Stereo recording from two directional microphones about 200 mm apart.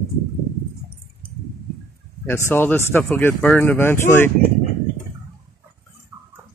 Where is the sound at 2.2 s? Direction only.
10° left (ahead or behind).